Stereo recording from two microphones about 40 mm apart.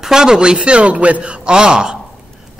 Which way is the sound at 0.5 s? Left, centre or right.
Right.